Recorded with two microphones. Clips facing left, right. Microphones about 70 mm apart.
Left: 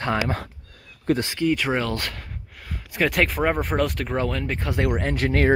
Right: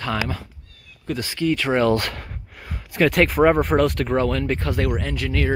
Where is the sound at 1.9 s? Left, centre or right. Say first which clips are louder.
Right 7 dB; right.